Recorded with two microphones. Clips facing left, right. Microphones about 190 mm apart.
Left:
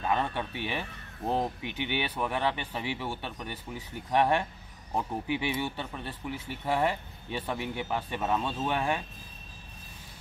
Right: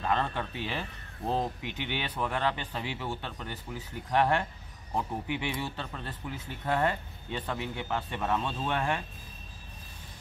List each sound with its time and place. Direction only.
0.0 s speech: 15° left (ahead or behind)